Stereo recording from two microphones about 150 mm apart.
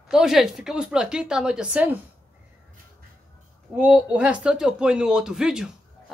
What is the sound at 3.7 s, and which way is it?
Speech, 10° right (ahead or behind).